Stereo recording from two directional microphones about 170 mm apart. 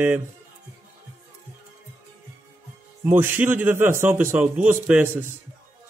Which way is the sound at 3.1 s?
15° right (ahead or behind).